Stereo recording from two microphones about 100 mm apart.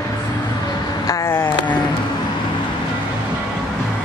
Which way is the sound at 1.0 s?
35° left (ahead or behind).